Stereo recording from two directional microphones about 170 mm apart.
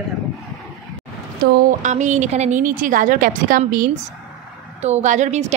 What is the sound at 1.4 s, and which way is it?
Speech, 65° right (ahead or behind).